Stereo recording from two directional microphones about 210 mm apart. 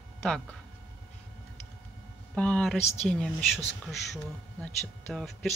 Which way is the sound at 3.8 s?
Centre (ahead or behind).